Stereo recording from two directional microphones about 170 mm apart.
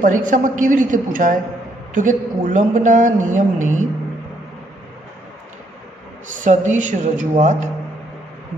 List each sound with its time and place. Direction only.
0.0 s speech: 50° right (ahead or behind)
6.4 s speech: 45° right (ahead or behind)